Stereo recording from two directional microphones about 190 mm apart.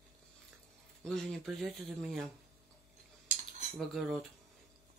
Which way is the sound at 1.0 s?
Centre (ahead or behind).